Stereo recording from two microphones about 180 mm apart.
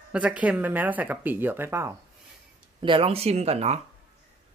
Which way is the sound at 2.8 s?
30° right (ahead or behind).